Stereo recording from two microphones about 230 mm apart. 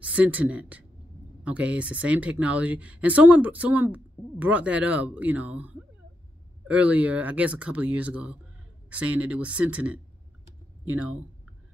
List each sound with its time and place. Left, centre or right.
0.0 s speech: centre
10.9 s speech: right